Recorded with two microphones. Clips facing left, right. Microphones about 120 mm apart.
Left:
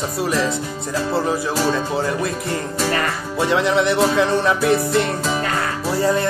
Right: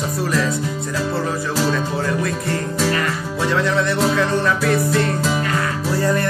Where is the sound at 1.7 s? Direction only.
25° left (ahead or behind).